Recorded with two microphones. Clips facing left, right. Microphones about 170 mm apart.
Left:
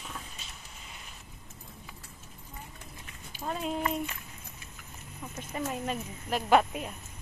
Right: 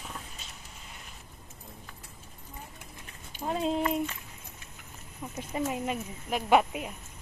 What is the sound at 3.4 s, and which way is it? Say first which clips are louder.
Speech: right 3 dB; 25° right (ahead or behind).